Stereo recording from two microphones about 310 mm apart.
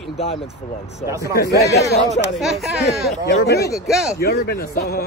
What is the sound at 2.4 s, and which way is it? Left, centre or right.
Speech, centre.